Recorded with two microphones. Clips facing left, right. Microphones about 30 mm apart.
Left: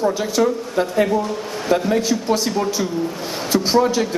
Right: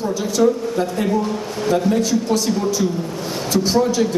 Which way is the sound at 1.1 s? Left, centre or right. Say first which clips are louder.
Even; centre.